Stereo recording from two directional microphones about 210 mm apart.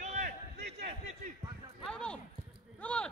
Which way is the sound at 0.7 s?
30° right (ahead or behind).